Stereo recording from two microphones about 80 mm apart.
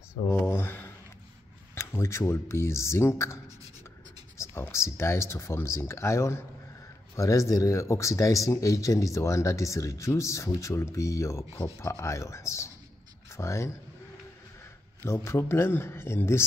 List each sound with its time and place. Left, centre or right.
0.1 s a man's voice: left
15.0 s a man's voice: left